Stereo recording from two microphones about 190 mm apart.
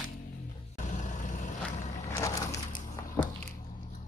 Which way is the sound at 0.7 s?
40° left (ahead or behind).